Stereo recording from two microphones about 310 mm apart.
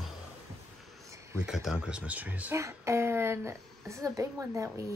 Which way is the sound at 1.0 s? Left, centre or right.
Centre.